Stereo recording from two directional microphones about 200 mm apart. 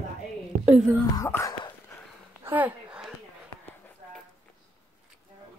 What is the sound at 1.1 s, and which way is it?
Speech, 15° left (ahead or behind).